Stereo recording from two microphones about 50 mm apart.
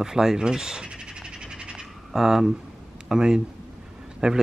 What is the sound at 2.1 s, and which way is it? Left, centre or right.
Speech, centre.